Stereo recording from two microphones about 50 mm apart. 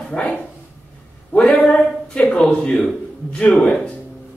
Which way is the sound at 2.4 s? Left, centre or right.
Centre.